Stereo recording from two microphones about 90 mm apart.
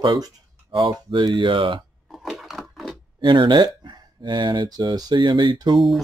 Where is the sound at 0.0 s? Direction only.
45° right (ahead or behind).